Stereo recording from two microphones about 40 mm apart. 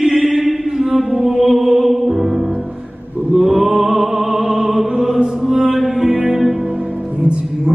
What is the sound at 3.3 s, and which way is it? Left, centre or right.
Music, centre.